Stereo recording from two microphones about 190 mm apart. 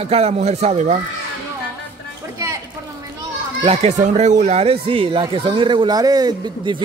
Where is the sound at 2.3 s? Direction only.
15° right (ahead or behind).